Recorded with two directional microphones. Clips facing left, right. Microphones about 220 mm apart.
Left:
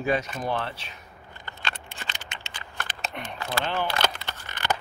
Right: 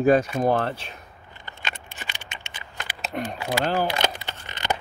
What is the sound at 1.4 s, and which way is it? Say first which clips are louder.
Computer keyboard: even; 15° right (ahead or behind).